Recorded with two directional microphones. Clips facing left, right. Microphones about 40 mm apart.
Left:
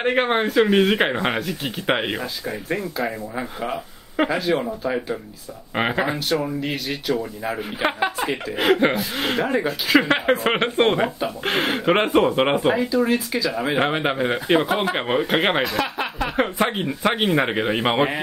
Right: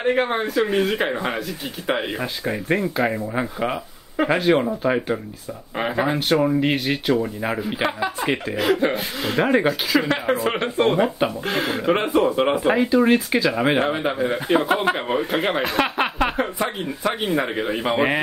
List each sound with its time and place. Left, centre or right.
0.0 s speech: left
2.4 s speech: right
4.6 s speech: right
5.7 s speech: left
6.3 s speech: right
7.8 s speech: left
8.5 s speech: left
9.4 s speech: right
9.8 s speech: left
12.6 s speech: right
13.8 s speech: left
15.6 s speech: right
16.3 s speech: left